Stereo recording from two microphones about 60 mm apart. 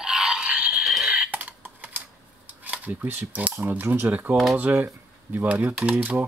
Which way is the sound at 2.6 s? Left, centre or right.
Right.